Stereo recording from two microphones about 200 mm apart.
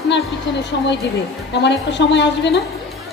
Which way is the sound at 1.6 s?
60° left (ahead or behind).